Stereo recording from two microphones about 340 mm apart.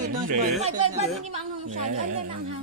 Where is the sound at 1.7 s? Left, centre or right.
Right.